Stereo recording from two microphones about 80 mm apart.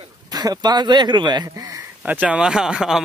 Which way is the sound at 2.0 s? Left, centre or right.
Right.